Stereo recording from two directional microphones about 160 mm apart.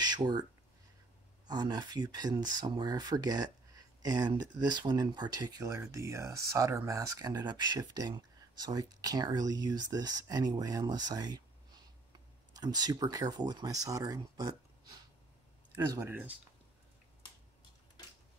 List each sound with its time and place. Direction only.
0.0 s speech: 25° right (ahead or behind)
1.5 s speech: 25° right (ahead or behind)
12.5 s speech: 25° right (ahead or behind)
15.9 s speech: 15° right (ahead or behind)